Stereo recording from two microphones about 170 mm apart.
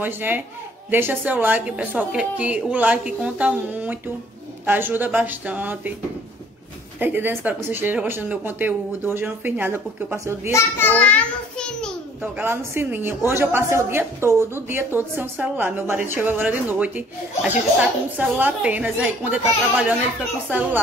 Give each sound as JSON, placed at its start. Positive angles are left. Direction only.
{"t": 0.0, "sound": "a woman's voice", "side_deg": -10}
{"t": 7.0, "sound": "a woman's voice", "side_deg": -10}
{"t": 10.5, "sound": "a child's voice", "side_deg": 10}
{"t": 12.2, "sound": "a woman's voice", "side_deg": -10}
{"t": 18.1, "sound": "a woman's voice", "side_deg": -10}